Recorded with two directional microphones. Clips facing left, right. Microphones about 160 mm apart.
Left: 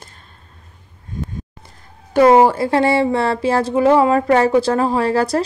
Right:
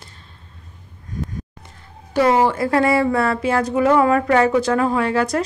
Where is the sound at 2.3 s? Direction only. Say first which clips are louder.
Left 4 dB; 35° left (ahead or behind).